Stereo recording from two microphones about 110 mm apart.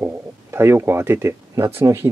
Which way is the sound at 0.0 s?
20° right (ahead or behind).